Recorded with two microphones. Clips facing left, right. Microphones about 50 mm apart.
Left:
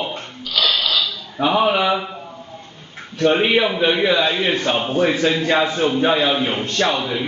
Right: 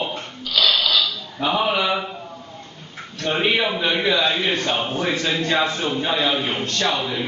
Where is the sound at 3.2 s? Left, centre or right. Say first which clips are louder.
Left 5 dB; centre.